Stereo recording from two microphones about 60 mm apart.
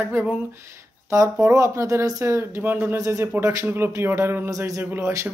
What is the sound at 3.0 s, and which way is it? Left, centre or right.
Speech, right.